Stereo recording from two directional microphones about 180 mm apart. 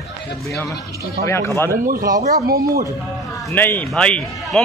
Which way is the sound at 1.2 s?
15° left (ahead or behind).